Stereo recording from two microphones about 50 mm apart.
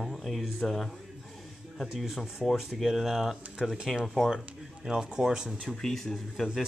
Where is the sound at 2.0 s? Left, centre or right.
Centre.